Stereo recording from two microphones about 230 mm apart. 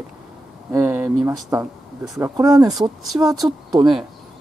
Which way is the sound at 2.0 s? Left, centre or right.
Centre.